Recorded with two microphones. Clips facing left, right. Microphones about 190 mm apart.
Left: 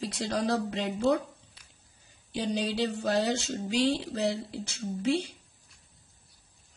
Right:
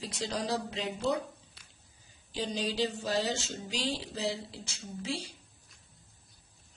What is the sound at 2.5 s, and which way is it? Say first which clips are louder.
A man's voice: left 3 dB; 60° left (ahead or behind).